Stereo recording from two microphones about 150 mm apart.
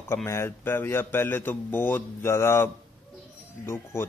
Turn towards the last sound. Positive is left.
turn(degrees=15)  # may be behind; listen again after turning